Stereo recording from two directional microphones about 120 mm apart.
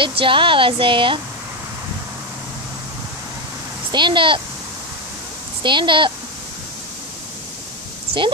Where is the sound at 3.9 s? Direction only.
40° right (ahead or behind).